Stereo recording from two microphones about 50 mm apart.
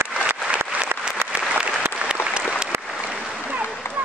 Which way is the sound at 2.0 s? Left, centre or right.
Centre.